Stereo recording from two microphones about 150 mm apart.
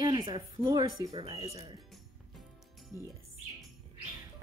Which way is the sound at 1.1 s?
40° right (ahead or behind).